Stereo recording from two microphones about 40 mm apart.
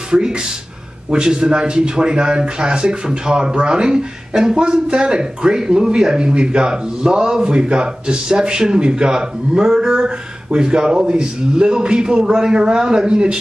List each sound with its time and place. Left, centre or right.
0.1 s speech: centre